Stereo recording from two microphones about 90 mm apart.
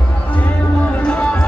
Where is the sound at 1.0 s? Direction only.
10° left (ahead or behind).